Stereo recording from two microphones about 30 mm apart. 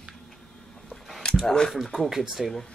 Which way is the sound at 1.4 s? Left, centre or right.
Centre.